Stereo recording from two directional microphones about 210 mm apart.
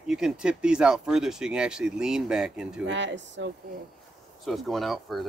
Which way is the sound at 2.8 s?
60° right (ahead or behind).